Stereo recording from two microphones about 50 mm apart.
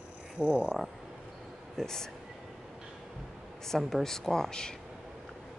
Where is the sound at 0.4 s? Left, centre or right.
Centre.